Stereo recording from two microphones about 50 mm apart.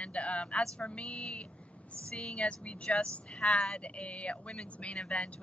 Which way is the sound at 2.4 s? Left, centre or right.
Left.